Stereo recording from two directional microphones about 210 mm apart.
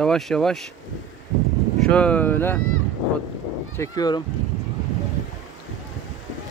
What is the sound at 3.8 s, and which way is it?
Speech, 20° left (ahead or behind).